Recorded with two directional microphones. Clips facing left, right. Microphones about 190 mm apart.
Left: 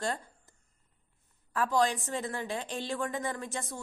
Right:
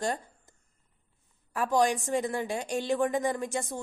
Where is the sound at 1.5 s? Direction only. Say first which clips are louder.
Right 2 dB; 15° right (ahead or behind).